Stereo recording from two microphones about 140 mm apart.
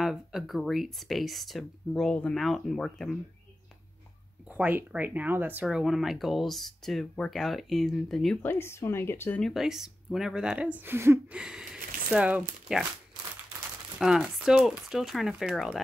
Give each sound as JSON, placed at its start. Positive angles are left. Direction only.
{"t": 0.0, "sound": "speech", "side_deg": -5}
{"t": 4.5, "sound": "speech", "side_deg": -10}
{"t": 8.4, "sound": "speech", "side_deg": 15}
{"t": 9.4, "sound": "speech", "side_deg": 0}
{"t": 11.4, "sound": "speech", "side_deg": -5}
{"t": 13.9, "sound": "speech", "side_deg": -5}